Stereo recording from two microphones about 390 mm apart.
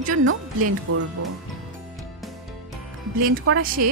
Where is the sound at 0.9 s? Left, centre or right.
Right.